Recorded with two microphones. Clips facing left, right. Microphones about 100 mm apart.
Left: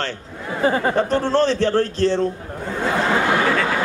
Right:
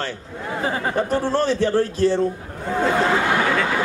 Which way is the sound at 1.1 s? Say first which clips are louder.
Left 2 dB; 10° right (ahead or behind).